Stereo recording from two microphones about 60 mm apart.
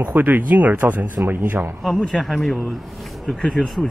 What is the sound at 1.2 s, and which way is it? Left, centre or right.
Speech, right.